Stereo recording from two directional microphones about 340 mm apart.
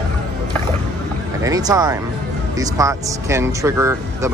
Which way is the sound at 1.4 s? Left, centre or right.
Centre.